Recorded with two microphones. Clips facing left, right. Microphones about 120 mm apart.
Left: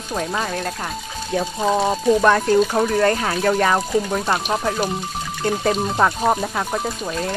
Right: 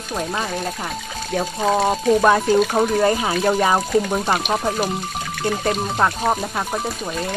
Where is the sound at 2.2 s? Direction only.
10° right (ahead or behind).